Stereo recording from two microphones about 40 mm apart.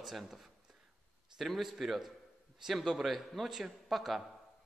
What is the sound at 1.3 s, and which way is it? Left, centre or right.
A man's voice, centre.